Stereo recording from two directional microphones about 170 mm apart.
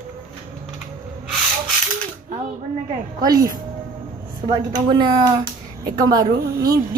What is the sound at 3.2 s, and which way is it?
Speech, 20° right (ahead or behind).